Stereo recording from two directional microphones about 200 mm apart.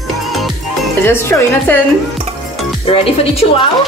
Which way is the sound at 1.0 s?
10° left (ahead or behind).